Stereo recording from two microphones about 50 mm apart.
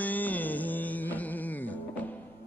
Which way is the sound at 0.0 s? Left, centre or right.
Left.